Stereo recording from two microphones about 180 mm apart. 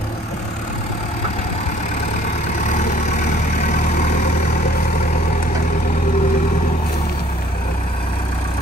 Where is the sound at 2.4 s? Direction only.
40° left (ahead or behind).